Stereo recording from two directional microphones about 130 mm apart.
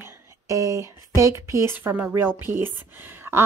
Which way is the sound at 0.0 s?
25° right (ahead or behind).